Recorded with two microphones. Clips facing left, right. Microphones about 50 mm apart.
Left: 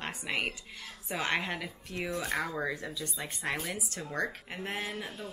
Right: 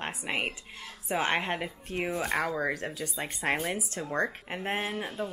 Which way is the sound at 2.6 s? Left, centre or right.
Right.